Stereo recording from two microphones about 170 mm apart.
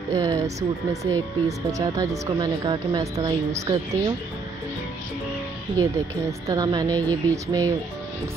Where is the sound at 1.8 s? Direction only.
20° right (ahead or behind).